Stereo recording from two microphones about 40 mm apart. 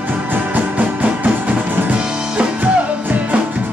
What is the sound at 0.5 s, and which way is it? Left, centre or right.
Music, right.